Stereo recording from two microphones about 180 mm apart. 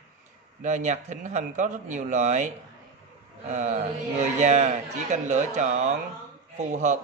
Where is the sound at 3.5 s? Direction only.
40° right (ahead or behind).